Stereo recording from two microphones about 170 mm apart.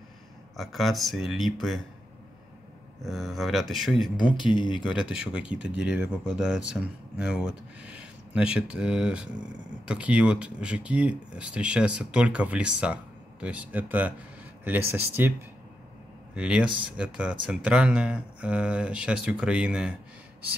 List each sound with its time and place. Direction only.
0.6 s speech: centre (ahead or behind)
3.0 s speech: centre (ahead or behind)
4.3 s speech: 30° left (ahead or behind)
4.8 s speech: 5° right (ahead or behind)
16.3 s speech: 5° right (ahead or behind)